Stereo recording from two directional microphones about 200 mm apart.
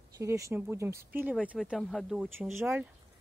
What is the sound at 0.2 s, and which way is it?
Speech, 15° right (ahead or behind).